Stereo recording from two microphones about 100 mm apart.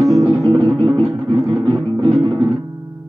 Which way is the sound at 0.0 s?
35° right (ahead or behind).